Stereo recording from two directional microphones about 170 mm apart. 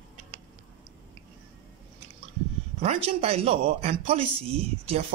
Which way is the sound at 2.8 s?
40° right (ahead or behind).